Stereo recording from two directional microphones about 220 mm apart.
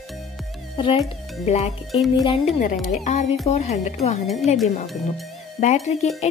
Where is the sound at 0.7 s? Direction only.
25° left (ahead or behind).